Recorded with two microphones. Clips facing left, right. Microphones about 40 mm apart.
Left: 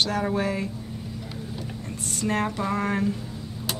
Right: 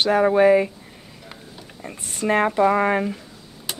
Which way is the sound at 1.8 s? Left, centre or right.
Right.